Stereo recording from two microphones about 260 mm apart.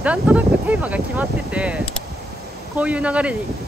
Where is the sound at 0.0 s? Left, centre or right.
Centre.